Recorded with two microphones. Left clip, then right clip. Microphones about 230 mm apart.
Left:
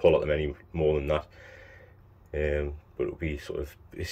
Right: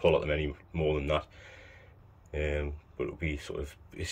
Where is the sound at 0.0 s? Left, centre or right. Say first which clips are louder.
Left 4 dB; centre.